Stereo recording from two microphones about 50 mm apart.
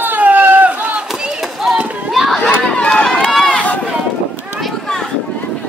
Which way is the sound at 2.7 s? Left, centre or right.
Left.